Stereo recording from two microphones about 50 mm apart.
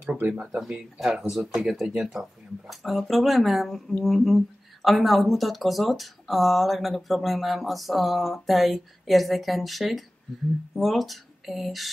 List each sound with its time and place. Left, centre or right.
0.3 s speech: centre